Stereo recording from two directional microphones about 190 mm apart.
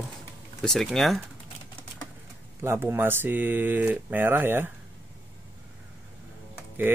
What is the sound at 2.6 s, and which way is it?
Speech, 15° right (ahead or behind).